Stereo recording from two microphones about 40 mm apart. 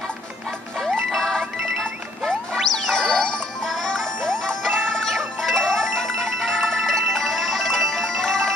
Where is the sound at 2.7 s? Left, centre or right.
Centre.